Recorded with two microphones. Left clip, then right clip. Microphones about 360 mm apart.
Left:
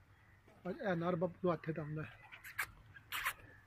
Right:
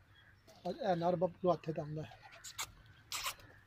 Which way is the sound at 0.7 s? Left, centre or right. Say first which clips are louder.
Right 4 dB; right.